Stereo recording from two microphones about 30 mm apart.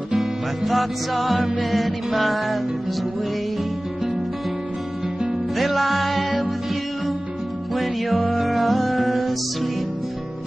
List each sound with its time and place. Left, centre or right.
0.2 s music: centre
1.3 s music: right
1.6 s music: centre
5.6 s music: centre
7.8 s music: centre